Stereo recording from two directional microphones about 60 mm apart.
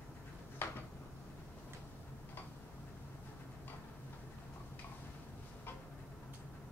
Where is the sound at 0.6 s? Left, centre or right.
Left.